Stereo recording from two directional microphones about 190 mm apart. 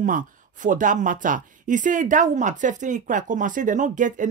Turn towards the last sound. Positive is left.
turn(degrees=-40)  # may be behind; listen again after turning